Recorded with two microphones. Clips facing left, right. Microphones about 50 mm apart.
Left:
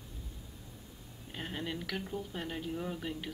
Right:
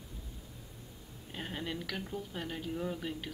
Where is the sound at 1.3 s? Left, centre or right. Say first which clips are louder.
Even; centre.